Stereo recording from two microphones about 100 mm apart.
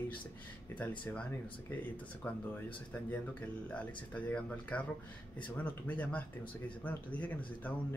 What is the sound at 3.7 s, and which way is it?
Speech, 10° left (ahead or behind).